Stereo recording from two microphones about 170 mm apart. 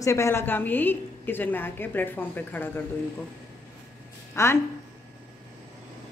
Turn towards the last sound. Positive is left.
turn(degrees=15)  # may be behind; listen again after turning